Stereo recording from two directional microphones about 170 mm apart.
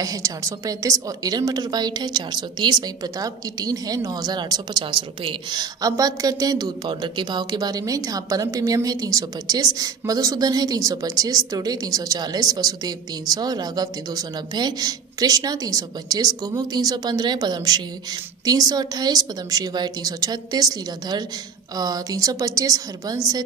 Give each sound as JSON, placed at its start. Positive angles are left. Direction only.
{"t": 0.0, "sound": "a woman's voice", "side_deg": -20}